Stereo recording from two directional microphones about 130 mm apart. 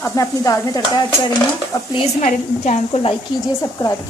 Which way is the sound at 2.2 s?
65° left (ahead or behind).